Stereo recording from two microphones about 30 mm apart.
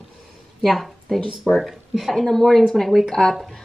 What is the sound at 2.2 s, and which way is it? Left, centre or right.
A woman's voice, centre.